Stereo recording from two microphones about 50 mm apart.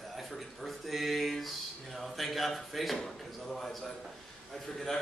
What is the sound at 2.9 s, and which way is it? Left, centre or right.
A man's voice, centre.